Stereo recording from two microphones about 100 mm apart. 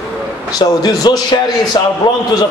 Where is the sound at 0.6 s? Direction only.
40° left (ahead or behind).